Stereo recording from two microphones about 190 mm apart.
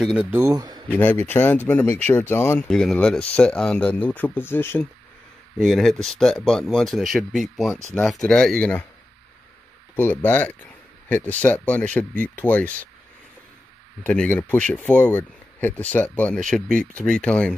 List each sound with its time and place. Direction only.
0.0 s speech: centre (ahead or behind)
0.3 s a man's voice: 15° right (ahead or behind)
0.8 s speech: 10° left (ahead or behind)
5.6 s speech: centre (ahead or behind)
9.9 s speech: 10° left (ahead or behind)
14.0 s speech: 5° left (ahead or behind)